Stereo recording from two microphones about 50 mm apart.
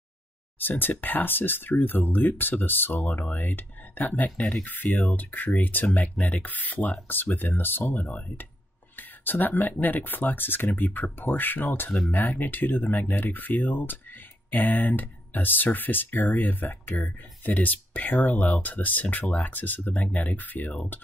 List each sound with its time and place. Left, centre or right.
0.6 s speech: left
4.4 s speech: left
4.6 s speech: left